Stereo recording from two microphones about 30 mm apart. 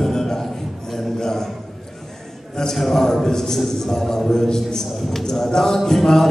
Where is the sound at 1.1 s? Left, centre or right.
Centre.